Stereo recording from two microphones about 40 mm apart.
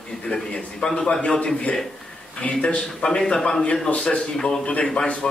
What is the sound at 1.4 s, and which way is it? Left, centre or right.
A man's voice, left.